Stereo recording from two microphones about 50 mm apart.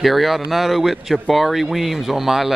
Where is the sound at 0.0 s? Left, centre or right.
Centre.